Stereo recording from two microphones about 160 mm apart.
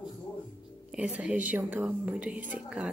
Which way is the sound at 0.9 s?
5° right (ahead or behind).